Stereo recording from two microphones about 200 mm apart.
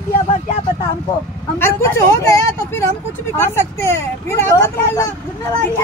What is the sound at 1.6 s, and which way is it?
Speech, 15° left (ahead or behind).